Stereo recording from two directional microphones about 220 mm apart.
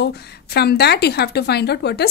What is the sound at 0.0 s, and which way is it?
A woman's voice, 45° left (ahead or behind).